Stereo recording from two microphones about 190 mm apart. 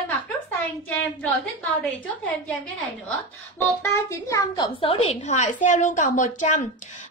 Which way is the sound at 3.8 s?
15° left (ahead or behind).